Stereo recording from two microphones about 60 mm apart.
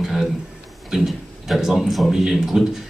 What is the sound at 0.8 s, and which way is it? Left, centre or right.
A man's voice, centre.